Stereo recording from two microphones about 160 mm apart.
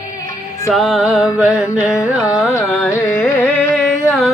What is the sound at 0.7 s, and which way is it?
Music, centre (ahead or behind).